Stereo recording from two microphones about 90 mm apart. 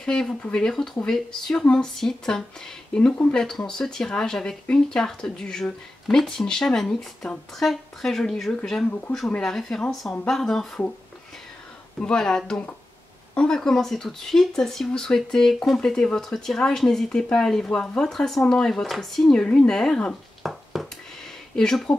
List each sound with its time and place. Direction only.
0.0 s speech: 10° left (ahead or behind)
12.0 s speech: 10° left (ahead or behind)